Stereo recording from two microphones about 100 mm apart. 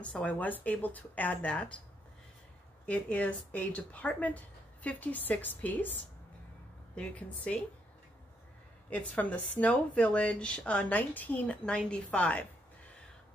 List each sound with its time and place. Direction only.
0.0 s a woman's voice: 15° left (ahead or behind)
2.9 s a woman's voice: 15° left (ahead or behind)
7.0 s a woman's voice: 15° left (ahead or behind)
8.9 s a woman's voice: 15° left (ahead or behind)